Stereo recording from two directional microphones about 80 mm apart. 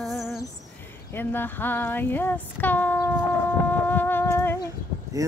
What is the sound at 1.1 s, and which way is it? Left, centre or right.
Female singing, left.